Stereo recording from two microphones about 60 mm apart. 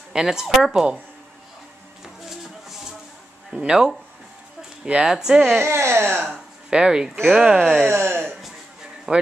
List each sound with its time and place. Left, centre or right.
0.1 s speech: centre
2.2 s music: centre
3.4 s speech: centre
5.6 s speech: right
6.7 s speech: centre
7.9 s a sound: right
9.1 s a man's voice: centre